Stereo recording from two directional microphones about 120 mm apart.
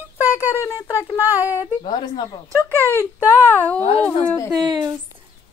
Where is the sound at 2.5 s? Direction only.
15° left (ahead or behind).